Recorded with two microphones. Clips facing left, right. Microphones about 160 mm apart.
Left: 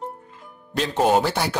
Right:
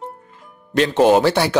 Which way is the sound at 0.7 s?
85° right.